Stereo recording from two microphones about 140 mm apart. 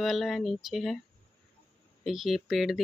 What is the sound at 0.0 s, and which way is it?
Speech, centre (ahead or behind).